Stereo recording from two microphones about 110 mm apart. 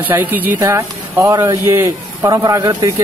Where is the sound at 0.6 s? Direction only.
25° right (ahead or behind).